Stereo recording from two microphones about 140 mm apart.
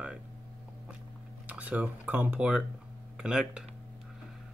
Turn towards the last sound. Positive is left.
turn(degrees=-5)  # may be behind; listen again after turning